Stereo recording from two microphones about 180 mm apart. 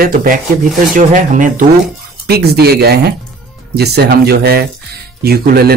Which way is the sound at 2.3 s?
60° right (ahead or behind).